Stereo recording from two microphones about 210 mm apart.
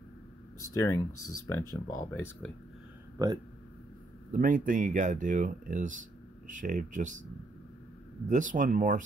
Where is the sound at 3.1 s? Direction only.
15° right (ahead or behind).